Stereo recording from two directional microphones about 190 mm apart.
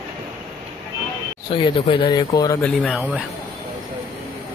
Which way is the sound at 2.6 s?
5° left (ahead or behind).